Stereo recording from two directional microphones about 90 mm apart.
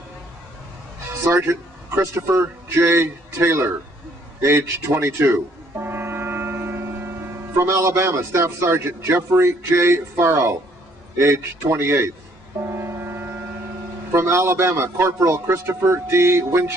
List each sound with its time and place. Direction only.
1.2 s a man's voice: 30° right (ahead or behind)
12.6 s ship: 30° right (ahead or behind)
14.1 s a man's voice: 30° right (ahead or behind)